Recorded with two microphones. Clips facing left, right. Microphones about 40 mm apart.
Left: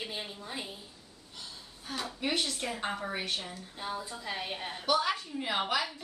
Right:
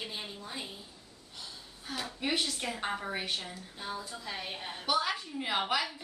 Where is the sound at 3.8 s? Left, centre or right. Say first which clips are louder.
Left 2 dB; centre.